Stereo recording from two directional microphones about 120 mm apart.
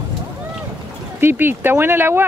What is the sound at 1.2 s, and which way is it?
Speech, 15° right (ahead or behind).